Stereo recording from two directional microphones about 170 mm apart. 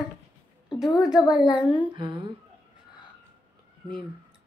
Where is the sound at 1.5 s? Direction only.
30° left (ahead or behind).